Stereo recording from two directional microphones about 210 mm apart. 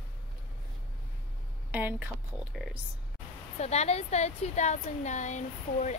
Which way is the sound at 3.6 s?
30° left (ahead or behind).